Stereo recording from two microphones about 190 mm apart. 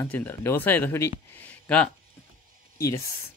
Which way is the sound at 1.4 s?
5° left (ahead or behind).